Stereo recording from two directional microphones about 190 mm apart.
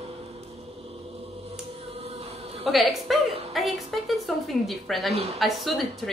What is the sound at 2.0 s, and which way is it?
Music, 35° right (ahead or behind).